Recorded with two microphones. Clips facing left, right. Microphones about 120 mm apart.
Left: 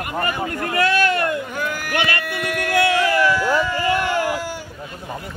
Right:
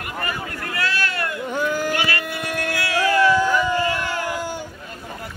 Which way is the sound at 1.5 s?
20° right (ahead or behind).